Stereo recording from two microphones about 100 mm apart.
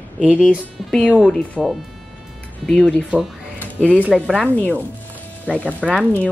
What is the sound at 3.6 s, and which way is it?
Music, 15° left (ahead or behind).